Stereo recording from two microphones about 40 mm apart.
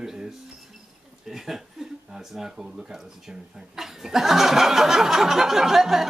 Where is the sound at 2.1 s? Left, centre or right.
Centre.